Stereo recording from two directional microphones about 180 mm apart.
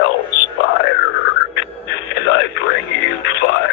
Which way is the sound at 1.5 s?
70° left (ahead or behind).